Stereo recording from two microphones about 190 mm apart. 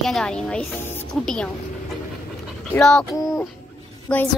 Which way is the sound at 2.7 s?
5° left (ahead or behind).